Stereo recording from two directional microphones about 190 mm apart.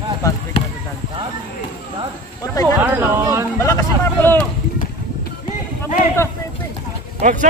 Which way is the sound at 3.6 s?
15° left (ahead or behind).